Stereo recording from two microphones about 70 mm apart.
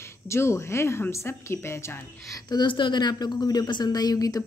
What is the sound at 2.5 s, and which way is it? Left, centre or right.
A woman's voice, left.